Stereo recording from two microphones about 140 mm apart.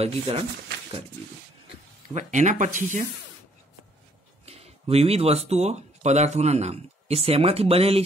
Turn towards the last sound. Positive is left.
turn(degrees=-45)  # may be behind; listen again after turning